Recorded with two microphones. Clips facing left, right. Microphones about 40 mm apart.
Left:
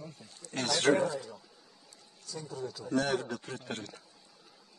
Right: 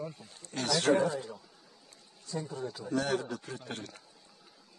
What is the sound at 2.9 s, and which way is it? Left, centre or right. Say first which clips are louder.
Speech: left 1 dB; left.